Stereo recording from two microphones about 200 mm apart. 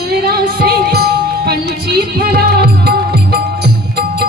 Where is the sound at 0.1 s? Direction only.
50° right (ahead or behind).